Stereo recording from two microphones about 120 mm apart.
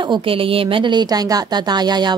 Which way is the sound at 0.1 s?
50° right (ahead or behind).